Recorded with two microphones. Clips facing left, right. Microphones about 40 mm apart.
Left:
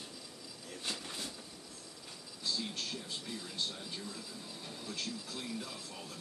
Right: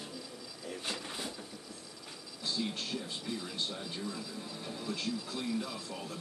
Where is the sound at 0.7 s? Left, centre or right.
Centre.